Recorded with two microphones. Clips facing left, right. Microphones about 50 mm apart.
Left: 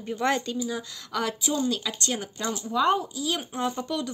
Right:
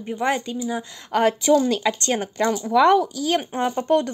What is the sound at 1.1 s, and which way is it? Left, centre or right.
Speech, right.